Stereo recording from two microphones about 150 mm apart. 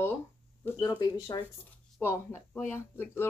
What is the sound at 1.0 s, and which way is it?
Speech, 25° left (ahead or behind).